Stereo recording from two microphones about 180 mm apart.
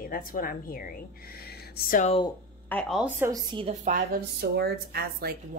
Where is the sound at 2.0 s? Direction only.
35° left (ahead or behind).